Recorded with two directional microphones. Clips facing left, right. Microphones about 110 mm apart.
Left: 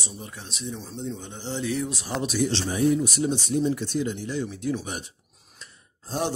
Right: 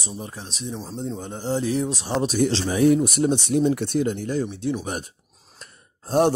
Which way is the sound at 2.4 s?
80° right.